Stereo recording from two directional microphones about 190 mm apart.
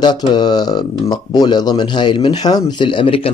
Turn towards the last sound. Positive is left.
turn(degrees=25)  # may be behind; listen again after turning